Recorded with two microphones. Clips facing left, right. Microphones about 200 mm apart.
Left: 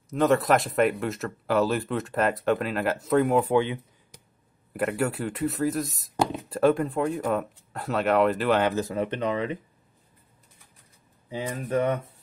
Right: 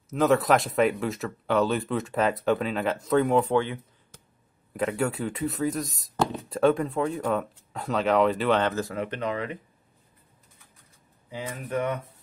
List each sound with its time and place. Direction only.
0.1 s speech: centre (ahead or behind); by 4.2 s 15° left (ahead or behind)
4.7 s speech: 5° left (ahead or behind)
8.7 s speech: 20° left (ahead or behind)